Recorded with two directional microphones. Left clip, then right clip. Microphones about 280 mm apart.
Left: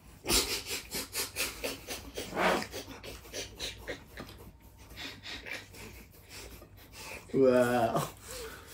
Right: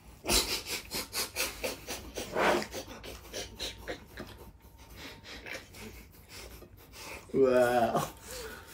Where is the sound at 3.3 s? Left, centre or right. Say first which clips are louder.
Even; centre.